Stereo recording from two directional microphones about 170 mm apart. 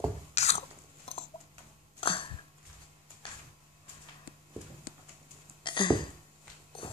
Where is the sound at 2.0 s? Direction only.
30° left (ahead or behind).